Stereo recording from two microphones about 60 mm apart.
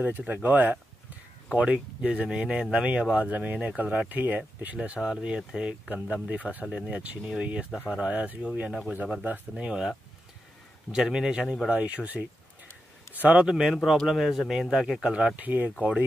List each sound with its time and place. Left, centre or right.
0.0 s speech: right
1.5 s speech: centre
8.9 s speech: right
9.6 s speech: centre
11.7 s speech: right
13.4 s speech: centre
14.0 s speech: centre
15.1 s speech: right